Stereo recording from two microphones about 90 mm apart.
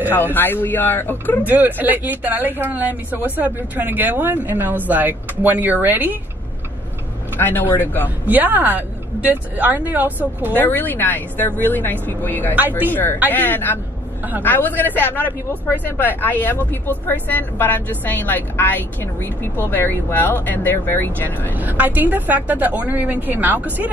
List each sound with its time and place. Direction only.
0.1 s speech: 20° left (ahead or behind)
1.4 s speech: 20° right (ahead or behind)
7.3 s speech: 20° left (ahead or behind)
8.3 s speech: 20° right (ahead or behind)
10.5 s speech: 20° left (ahead or behind)
12.5 s speech: 20° right (ahead or behind)
12.9 s speech: 20° left (ahead or behind)
21.5 s speech: 20° right (ahead or behind)